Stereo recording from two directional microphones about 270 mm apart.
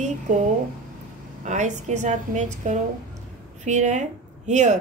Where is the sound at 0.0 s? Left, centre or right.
Right.